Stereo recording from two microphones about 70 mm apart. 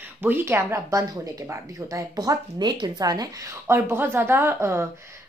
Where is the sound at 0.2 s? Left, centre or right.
Right.